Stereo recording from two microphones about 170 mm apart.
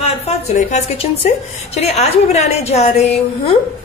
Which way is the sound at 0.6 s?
45° left (ahead or behind).